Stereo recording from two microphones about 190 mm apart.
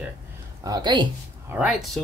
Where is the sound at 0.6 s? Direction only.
20° right (ahead or behind).